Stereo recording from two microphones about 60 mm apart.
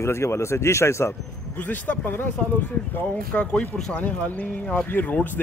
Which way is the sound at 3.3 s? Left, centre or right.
Centre.